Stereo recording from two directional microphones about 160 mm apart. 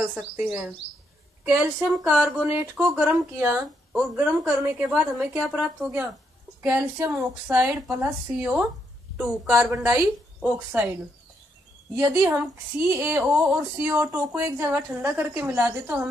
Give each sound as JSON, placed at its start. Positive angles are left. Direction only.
{"t": 0.1, "sound": "speech", "side_deg": -5}
{"t": 12.0, "sound": "speech", "side_deg": -20}